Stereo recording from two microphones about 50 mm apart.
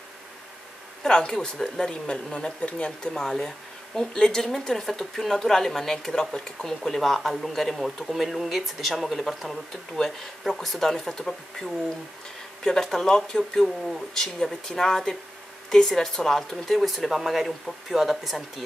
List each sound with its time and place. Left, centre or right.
1.0 s speech: centre
3.0 s speech: centre